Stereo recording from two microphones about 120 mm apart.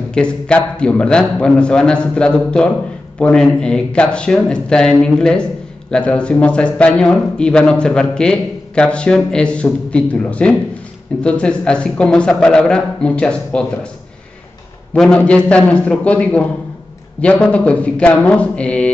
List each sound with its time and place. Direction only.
0.1 s speech: 10° left (ahead or behind)
15.0 s speech: 5° left (ahead or behind)